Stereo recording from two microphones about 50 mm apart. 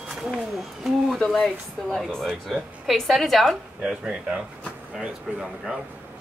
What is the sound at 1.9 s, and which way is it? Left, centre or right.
A woman's voice, centre.